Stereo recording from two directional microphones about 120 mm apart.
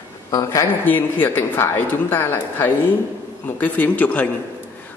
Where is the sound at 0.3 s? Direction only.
30° left (ahead or behind).